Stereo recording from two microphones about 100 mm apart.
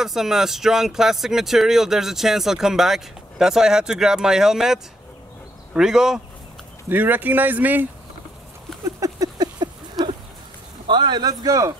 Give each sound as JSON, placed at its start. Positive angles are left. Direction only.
{"t": 0.0, "sound": "speech", "side_deg": -5}
{"t": 6.9, "sound": "speech", "side_deg": -20}
{"t": 8.8, "sound": "a sound", "side_deg": -35}
{"t": 10.9, "sound": "a man's voice", "side_deg": -50}